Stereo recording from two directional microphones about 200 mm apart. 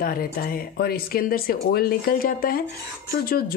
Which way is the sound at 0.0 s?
45° left (ahead or behind).